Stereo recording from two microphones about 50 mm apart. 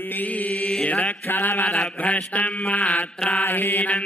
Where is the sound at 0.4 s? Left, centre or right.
Left.